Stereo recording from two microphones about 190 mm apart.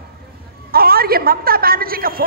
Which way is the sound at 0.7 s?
50° right (ahead or behind).